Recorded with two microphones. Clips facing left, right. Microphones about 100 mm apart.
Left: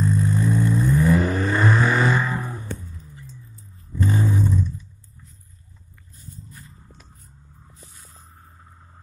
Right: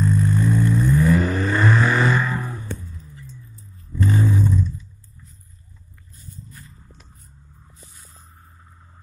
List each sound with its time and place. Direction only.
0.2 s vehicle: 30° left (ahead or behind)
1.3 s vehicle: 5° left (ahead or behind)
1.6 s vehicle: 15° left (ahead or behind)
1.9 s vehicle: 5° left (ahead or behind)
2.1 s vehicle: 15° left (ahead or behind)
3.9 s vehicle: 10° left (ahead or behind)